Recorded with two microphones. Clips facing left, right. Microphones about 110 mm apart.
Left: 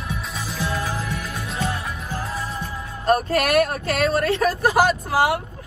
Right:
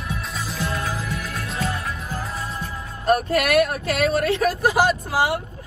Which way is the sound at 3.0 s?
35° left (ahead or behind).